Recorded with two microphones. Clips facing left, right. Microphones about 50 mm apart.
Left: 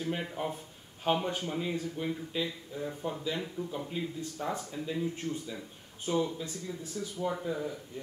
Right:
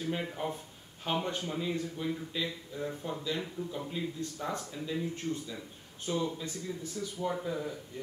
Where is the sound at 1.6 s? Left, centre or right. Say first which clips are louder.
Even; centre.